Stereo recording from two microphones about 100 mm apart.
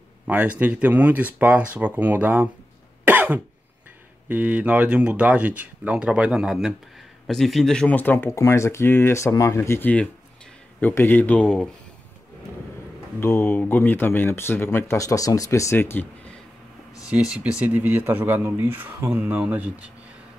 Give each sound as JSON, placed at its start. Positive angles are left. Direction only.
{"t": 0.3, "sound": "speech", "side_deg": -15}
{"t": 3.1, "sound": "cough", "side_deg": -15}
{"t": 4.3, "sound": "speech", "side_deg": -15}
{"t": 13.2, "sound": "speech", "side_deg": 20}
{"t": 15.0, "sound": "speech", "side_deg": 35}
{"t": 17.1, "sound": "speech", "side_deg": -10}